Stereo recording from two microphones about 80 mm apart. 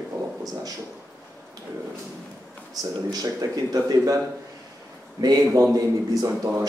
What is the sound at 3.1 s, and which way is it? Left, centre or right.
Speech, right.